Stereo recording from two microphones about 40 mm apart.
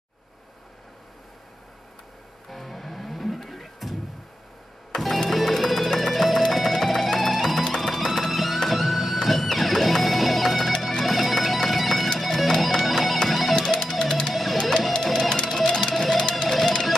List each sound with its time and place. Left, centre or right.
2.5 s music: centre
4.9 s music: centre
13.6 s music: centre
14.3 s music: centre